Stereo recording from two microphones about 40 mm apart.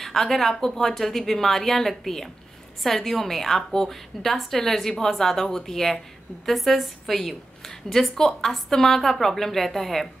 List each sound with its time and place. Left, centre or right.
0.0 s a woman's voice: centre